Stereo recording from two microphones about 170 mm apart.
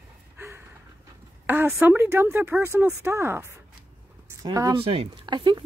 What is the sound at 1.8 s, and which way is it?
Speech, 15° right (ahead or behind).